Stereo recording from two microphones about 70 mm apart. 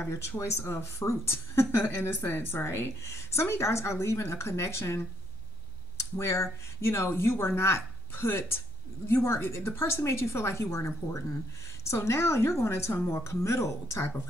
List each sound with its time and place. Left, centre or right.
0.0 s a woman's voice: left